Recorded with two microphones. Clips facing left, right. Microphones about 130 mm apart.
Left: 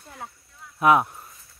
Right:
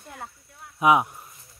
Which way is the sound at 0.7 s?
10° right (ahead or behind).